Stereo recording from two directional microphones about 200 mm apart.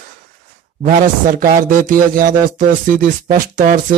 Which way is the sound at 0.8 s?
40° right (ahead or behind).